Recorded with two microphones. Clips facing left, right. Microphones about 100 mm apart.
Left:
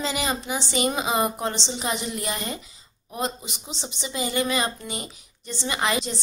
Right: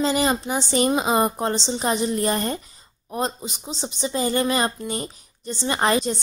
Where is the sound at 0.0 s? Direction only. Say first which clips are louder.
Right 6 dB; 40° right (ahead or behind).